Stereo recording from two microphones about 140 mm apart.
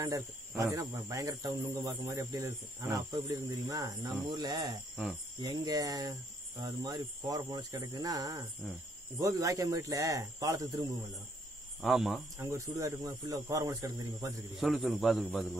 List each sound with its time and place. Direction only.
0.0 s speech: 25° right (ahead or behind)
11.8 s a man's voice: centre (ahead or behind)
12.4 s speech: 20° right (ahead or behind)
14.6 s a man's voice: centre (ahead or behind)